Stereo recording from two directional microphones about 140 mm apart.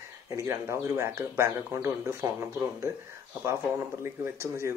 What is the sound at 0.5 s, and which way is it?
Speech, 20° right (ahead or behind).